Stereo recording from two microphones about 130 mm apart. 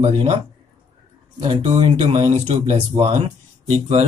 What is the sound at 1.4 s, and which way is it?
Speech, 40° right (ahead or behind).